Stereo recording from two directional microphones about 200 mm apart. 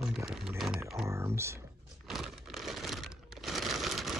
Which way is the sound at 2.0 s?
Centre (ahead or behind).